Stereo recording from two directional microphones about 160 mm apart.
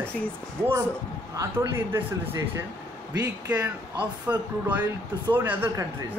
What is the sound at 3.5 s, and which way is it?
Speech, 10° right (ahead or behind).